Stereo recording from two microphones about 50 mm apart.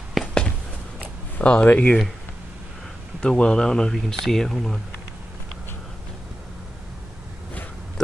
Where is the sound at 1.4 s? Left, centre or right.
Left.